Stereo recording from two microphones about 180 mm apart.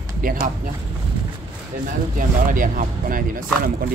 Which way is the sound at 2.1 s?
50° right (ahead or behind).